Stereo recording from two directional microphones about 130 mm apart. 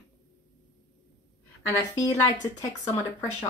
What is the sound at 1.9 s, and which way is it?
Speech, 25° left (ahead or behind).